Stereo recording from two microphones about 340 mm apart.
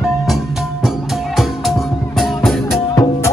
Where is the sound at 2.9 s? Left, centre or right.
Centre.